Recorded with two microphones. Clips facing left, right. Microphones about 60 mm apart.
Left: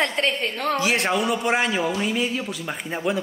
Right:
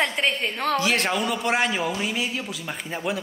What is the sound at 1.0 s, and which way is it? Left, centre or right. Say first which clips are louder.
A woman's voice: left 2 dB; centre.